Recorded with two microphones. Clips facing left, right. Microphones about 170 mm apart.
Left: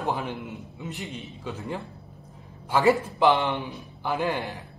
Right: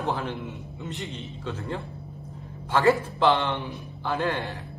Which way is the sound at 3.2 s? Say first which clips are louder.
Left 1 dB; 20° left (ahead or behind).